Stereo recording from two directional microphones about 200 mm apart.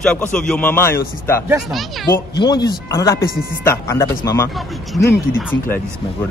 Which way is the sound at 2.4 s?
20° left (ahead or behind).